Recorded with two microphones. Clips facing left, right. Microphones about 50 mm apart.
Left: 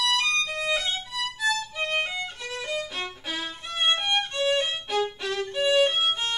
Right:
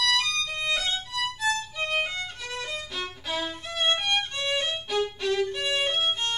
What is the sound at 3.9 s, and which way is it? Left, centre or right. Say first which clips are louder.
Violin: left 1 dB; centre.